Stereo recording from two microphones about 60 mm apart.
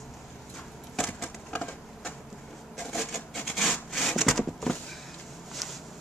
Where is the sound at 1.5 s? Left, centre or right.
Left.